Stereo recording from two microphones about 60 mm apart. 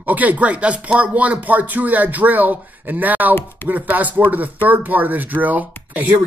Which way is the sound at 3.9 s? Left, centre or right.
Right.